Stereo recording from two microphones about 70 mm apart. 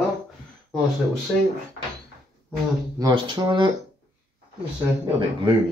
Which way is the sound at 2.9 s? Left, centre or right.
Right.